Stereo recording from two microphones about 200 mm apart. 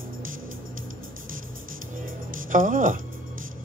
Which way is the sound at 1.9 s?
40° right (ahead or behind).